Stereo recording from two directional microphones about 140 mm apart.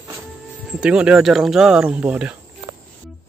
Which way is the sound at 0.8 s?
5° right (ahead or behind).